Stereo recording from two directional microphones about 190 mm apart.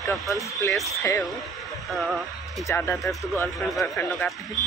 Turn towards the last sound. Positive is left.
turn(degrees=0)  # may be behind; listen again after turning